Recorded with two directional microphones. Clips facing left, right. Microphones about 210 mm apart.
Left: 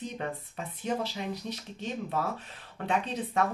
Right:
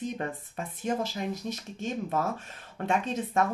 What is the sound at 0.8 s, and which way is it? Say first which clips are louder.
Speech: right 2 dB; 45° right (ahead or behind).